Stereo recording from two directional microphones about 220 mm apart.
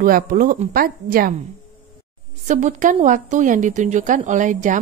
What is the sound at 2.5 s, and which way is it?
A woman's voice, 35° right (ahead or behind).